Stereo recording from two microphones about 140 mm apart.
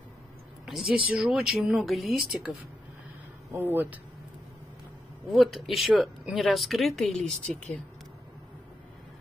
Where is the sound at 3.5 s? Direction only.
15° right (ahead or behind).